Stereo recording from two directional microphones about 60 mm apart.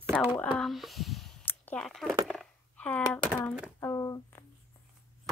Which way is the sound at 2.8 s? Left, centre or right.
Left.